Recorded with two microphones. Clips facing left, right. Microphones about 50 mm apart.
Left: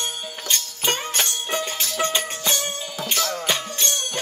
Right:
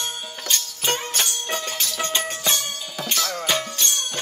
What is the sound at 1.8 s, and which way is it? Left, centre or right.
Music, left.